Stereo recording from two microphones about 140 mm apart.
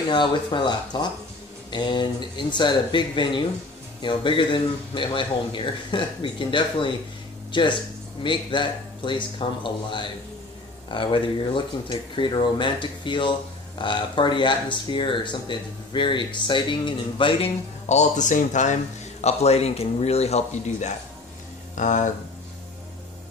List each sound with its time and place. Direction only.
0.1 s speech: 35° left (ahead or behind)
17.8 s speech: 55° left (ahead or behind)
19.2 s a man's voice: 50° left (ahead or behind)
21.7 s speech: 65° left (ahead or behind)